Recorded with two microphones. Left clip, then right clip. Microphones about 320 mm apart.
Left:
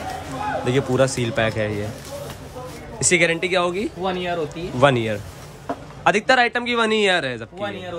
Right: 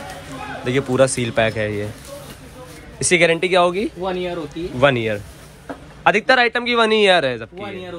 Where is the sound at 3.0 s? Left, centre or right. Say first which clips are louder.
Right 3 dB; centre.